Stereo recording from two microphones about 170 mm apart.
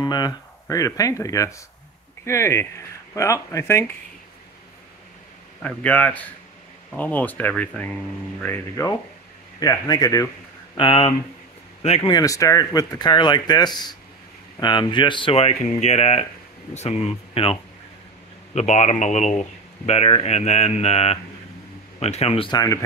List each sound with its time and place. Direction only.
0.0 s speech: 25° left (ahead or behind)
5.6 s speech: 10° left (ahead or behind)
10.8 s speech: 30° left (ahead or behind)
12.1 s speech: 20° left (ahead or behind)